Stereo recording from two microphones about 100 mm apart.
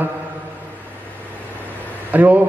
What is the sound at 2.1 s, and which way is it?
Speech, 15° right (ahead or behind).